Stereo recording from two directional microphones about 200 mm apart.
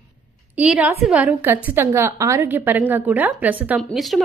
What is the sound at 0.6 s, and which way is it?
A woman's voice, 5° right (ahead or behind).